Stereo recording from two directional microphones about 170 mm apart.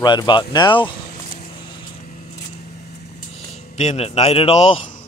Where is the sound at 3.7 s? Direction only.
40° left (ahead or behind).